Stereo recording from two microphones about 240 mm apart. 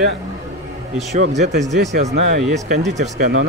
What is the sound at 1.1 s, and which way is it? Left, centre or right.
Speech, right.